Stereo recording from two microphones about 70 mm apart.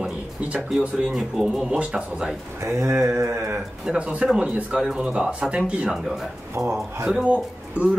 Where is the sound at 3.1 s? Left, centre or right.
Right.